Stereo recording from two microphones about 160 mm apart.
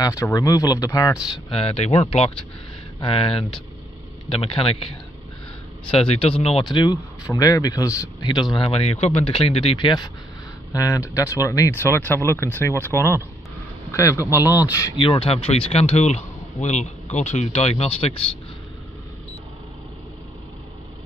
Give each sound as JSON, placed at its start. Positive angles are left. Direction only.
{"t": 0.0, "sound": "speech", "side_deg": 20}
{"t": 1.5, "sound": "speech", "side_deg": 40}